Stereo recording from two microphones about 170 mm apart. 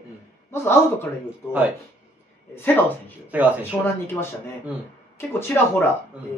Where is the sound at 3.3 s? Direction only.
10° right (ahead or behind).